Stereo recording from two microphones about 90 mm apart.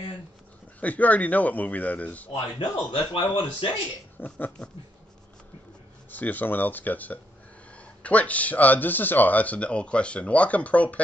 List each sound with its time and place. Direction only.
0.7 s speech: 15° left (ahead or behind)
2.3 s a man's voice: 80° left
4.2 s speech: 20° left (ahead or behind)
6.1 s speech: 20° left (ahead or behind)